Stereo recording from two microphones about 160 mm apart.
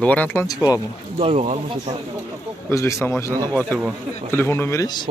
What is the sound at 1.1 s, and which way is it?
Speech, 35° right (ahead or behind).